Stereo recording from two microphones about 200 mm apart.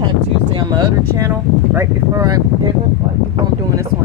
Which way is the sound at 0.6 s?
20° right (ahead or behind).